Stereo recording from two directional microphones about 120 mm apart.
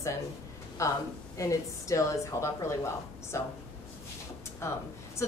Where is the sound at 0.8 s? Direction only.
25° left (ahead or behind).